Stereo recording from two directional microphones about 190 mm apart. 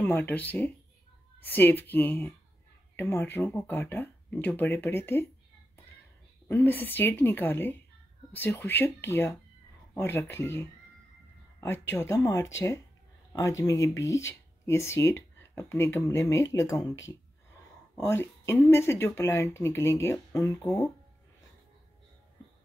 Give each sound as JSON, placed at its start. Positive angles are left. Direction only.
{"t": 0.0, "sound": "speech", "side_deg": 10}
{"t": 6.5, "sound": "speech", "side_deg": 10}